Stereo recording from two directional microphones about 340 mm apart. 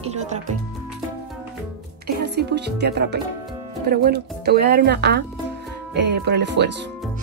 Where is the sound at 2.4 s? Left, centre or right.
Right.